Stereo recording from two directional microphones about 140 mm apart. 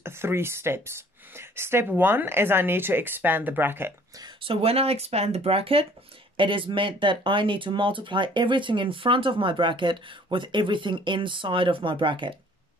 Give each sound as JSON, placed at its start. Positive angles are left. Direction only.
{"t": 0.0, "sound": "speech", "side_deg": -15}
{"t": 4.4, "sound": "speech", "side_deg": -40}